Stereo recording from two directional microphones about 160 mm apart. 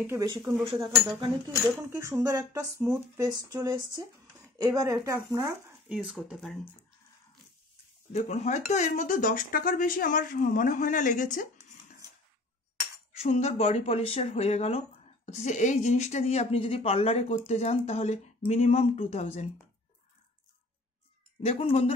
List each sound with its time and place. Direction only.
0.2 s speech: 25° right (ahead or behind)
1.8 s speech: 15° right (ahead or behind)
5.4 s speech: centre (ahead or behind)
8.1 s speech: 45° left (ahead or behind)
13.1 s speech: 40° left (ahead or behind)
21.5 s speech: 35° left (ahead or behind)